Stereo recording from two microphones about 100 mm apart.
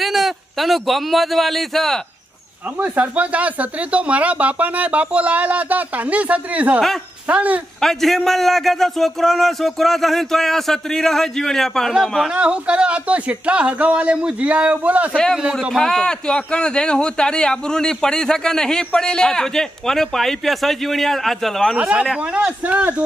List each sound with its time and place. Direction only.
0.0 s a man's voice: centre (ahead or behind)
2.8 s speech: 15° right (ahead or behind)
7.8 s a man's voice: 5° left (ahead or behind)
12.4 s speech: 10° right (ahead or behind)
15.7 s a man's voice: 5° left (ahead or behind)
21.7 s speech: 10° right (ahead or behind)